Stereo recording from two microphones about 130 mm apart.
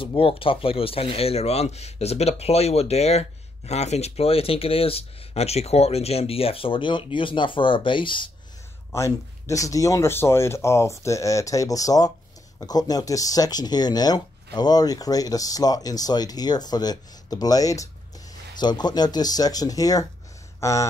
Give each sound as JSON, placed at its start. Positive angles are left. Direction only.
{"t": 0.0, "sound": "speech", "side_deg": 45}
{"t": 8.9, "sound": "speech", "side_deg": 25}